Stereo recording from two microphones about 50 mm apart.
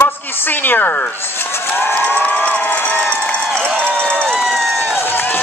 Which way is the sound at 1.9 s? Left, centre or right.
Left.